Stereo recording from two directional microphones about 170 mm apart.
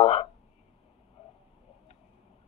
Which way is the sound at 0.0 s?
35° left (ahead or behind).